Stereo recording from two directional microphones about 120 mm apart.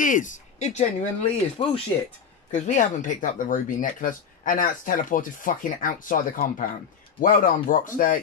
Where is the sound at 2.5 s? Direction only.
85° left.